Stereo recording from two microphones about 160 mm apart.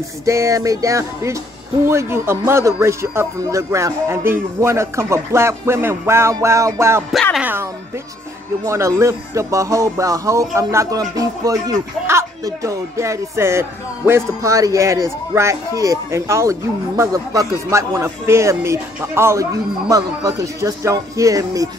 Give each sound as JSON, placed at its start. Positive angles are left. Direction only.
{"t": 0.2, "sound": "music", "side_deg": -20}
{"t": 1.9, "sound": "speech", "side_deg": -15}
{"t": 8.6, "sound": "music", "side_deg": -20}